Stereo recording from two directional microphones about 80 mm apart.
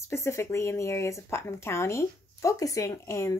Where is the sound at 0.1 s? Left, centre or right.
Left.